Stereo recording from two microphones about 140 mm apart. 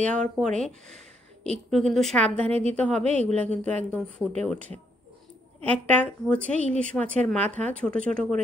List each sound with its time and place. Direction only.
0.0 s speech: 5° left (ahead or behind)
3.0 s a woman's voice: 50° right (ahead or behind)
3.4 s speech: 10° left (ahead or behind)